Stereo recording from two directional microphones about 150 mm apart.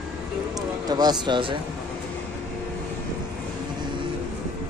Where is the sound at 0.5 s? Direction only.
25° right (ahead or behind).